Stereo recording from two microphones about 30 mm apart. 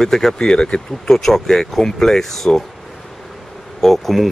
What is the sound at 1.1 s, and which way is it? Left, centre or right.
Speech, centre.